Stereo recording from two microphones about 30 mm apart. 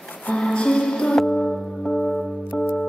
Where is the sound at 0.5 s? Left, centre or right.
Left.